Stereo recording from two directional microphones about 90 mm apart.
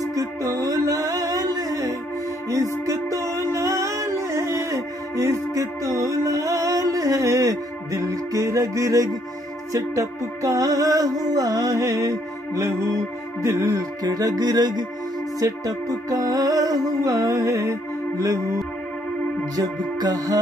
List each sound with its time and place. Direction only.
0.0 s music: 40° right (ahead or behind)
14.0 s music: 45° right (ahead or behind)
19.5 s music: 45° right (ahead or behind)